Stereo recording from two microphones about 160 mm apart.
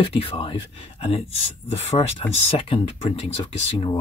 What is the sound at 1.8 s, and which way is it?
Speech, 40° left (ahead or behind).